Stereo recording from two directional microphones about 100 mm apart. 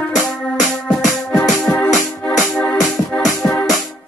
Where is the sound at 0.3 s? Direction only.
5° left (ahead or behind).